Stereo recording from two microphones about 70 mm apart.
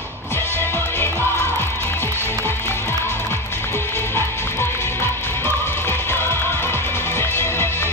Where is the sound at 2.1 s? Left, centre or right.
Left.